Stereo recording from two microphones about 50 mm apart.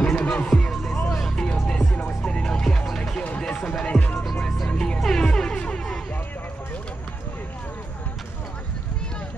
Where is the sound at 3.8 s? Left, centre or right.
Left.